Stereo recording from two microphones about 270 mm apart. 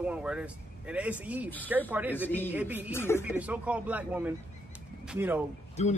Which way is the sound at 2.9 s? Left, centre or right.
Centre.